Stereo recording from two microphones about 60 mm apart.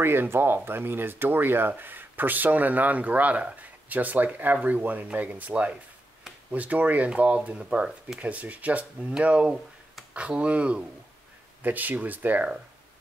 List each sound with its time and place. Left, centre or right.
0.0 s speech: right